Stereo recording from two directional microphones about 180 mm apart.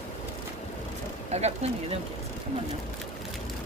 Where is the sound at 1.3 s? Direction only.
40° right (ahead or behind).